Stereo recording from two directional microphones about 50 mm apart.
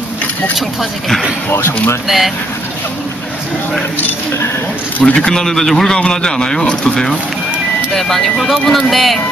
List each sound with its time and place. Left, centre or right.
0.6 s speech: centre
1.5 s speech: left
2.0 s speech: centre
5.0 s a man's voice: left
5.3 s speech: centre